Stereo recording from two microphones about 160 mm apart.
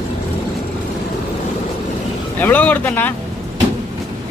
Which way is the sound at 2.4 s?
10° left (ahead or behind).